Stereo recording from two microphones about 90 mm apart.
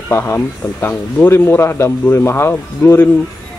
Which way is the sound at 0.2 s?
25° left (ahead or behind).